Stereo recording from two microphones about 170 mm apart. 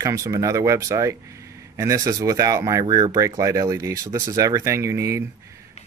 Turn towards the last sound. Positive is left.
turn(degrees=-15)  # may be behind; listen again after turning